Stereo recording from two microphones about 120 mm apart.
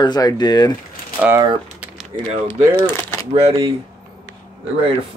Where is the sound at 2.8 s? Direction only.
20° left (ahead or behind).